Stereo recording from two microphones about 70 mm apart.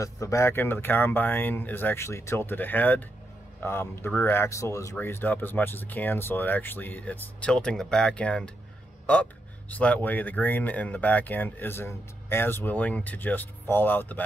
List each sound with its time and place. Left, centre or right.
0.0 s speech: left
0.5 s speech: left
4.5 s speech: left
5.0 s speech: left